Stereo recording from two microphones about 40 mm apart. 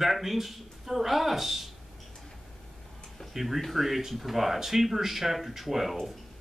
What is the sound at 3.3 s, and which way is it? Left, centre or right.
Speech, centre.